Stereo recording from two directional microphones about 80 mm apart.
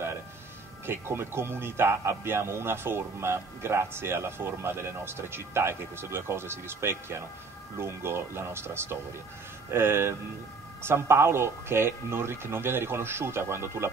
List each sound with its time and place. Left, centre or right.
0.8 s speech: right